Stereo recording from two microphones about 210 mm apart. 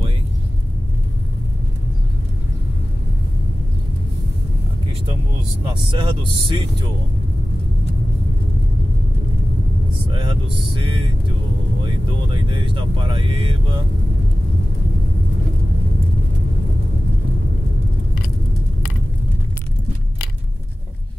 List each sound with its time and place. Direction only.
5.7 s speech: 25° right (ahead or behind)
10.1 s speech: 25° right (ahead or behind)
11.8 s speech: 25° right (ahead or behind)